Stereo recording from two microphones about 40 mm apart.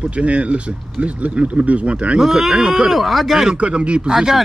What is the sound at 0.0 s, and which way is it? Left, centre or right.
Speech, right.